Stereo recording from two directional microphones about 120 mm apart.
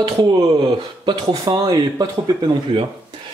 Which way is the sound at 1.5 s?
35° right (ahead or behind).